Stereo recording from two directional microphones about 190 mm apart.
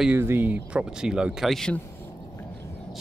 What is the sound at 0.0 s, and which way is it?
Speech, 10° right (ahead or behind).